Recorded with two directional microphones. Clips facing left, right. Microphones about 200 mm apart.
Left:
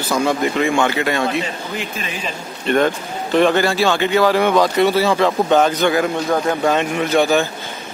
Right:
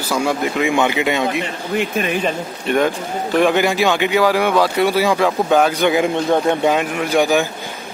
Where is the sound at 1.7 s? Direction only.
55° right (ahead or behind).